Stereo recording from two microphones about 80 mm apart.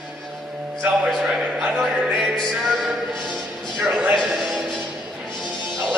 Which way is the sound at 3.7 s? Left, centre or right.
Centre.